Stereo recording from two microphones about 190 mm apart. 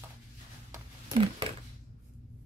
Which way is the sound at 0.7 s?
25° right (ahead or behind).